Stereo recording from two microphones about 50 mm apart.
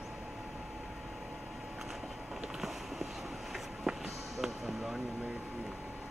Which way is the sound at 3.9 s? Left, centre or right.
Centre.